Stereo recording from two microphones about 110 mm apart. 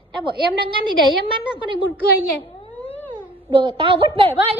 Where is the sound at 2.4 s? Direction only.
60° left (ahead or behind).